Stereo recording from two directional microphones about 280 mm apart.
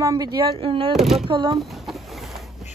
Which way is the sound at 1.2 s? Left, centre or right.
Centre.